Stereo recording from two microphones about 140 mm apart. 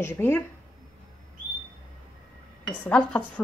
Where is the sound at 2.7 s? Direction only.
10° left (ahead or behind).